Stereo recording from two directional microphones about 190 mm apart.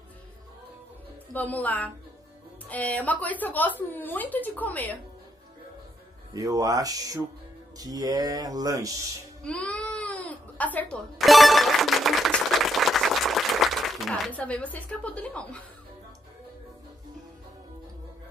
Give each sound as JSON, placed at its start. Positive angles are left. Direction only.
{"t": 1.3, "sound": "a woman's voice", "side_deg": 10}
{"t": 6.3, "sound": "speech", "side_deg": -20}
{"t": 9.4, "sound": "crying", "side_deg": 5}